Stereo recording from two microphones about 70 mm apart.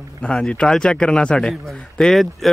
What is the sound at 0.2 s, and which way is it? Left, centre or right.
Speech, centre.